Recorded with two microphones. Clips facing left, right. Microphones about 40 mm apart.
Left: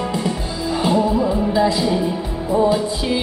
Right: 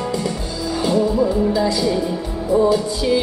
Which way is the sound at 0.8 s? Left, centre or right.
Centre.